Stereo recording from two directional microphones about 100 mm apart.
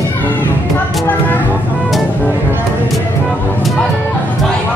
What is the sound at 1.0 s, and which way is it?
Vehicle, 20° left (ahead or behind).